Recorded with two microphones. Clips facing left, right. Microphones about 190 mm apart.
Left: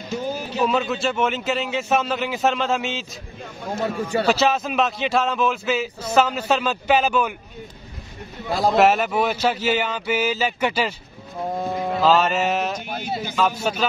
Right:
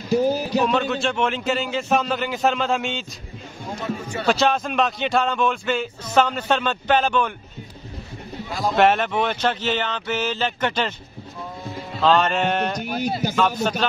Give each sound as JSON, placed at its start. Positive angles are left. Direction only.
{"t": 0.1, "sound": "a sound", "side_deg": -35}
{"t": 0.6, "sound": "speech", "side_deg": 0}
{"t": 4.3, "sound": "speech", "side_deg": 5}
{"t": 8.5, "sound": "speech", "side_deg": 35}
{"t": 8.7, "sound": "speech", "side_deg": 5}
{"t": 11.4, "sound": "a sound", "side_deg": 55}
{"t": 12.0, "sound": "speech", "side_deg": 5}